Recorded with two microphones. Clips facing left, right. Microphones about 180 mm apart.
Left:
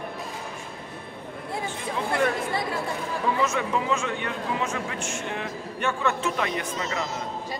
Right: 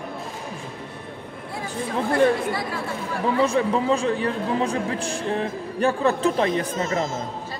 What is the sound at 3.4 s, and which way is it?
A man's voice, 30° right (ahead or behind).